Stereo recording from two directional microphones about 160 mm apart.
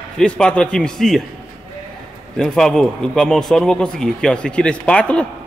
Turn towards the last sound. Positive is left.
turn(degrees=5)  # may be behind; listen again after turning